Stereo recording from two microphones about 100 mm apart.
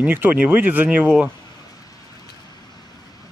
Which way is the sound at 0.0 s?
20° right (ahead or behind).